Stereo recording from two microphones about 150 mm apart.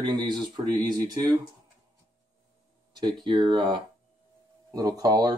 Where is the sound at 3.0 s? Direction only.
30° right (ahead or behind).